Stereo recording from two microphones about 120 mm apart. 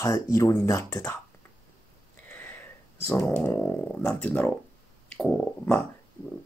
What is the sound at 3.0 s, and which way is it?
Speech, 20° left (ahead or behind).